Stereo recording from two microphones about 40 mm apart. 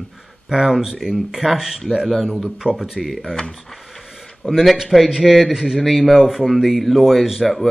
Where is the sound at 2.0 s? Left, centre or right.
Centre.